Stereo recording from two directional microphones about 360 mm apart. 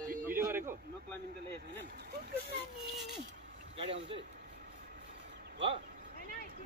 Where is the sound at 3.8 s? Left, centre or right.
Centre.